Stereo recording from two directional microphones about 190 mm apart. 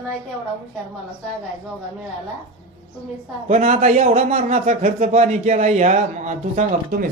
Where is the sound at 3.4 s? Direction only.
35° right (ahead or behind).